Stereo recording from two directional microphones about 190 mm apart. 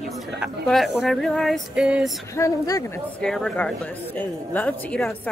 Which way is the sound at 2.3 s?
15° left (ahead or behind).